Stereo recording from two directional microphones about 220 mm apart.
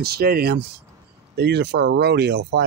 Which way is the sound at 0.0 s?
45° right (ahead or behind).